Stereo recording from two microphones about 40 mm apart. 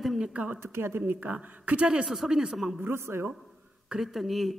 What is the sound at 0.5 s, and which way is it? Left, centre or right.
Speech, right.